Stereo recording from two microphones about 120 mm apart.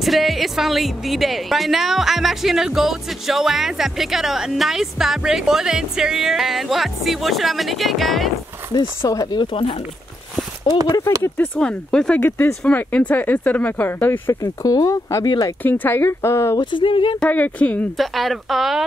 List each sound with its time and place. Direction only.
0.0 s speech: centre (ahead or behind)
9.0 s speech: 30° left (ahead or behind); by 9.8 s 45° left (ahead or behind)
11.2 s speech: 15° left (ahead or behind)
12.2 s speech: 20° left (ahead or behind)
14.4 s speech: 30° left (ahead or behind)
15.6 s speech: 15° left (ahead or behind)
16.7 s speech: 45° left (ahead or behind)
17.2 s speech: 15° left (ahead or behind)
17.9 s speech: centre (ahead or behind)